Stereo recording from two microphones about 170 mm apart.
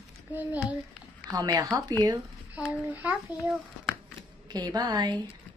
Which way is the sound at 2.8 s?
10° right (ahead or behind).